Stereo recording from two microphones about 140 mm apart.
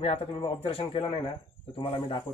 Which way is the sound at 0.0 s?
40° left (ahead or behind).